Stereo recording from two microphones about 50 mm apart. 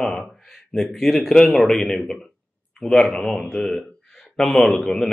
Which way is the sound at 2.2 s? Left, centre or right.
Centre.